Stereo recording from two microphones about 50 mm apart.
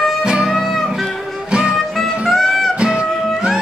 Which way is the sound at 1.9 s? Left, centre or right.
Centre.